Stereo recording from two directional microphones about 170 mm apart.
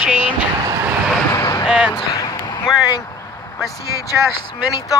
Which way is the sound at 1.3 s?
25° left (ahead or behind).